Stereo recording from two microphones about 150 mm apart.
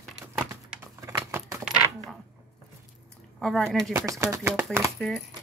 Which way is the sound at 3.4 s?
Centre (ahead or behind).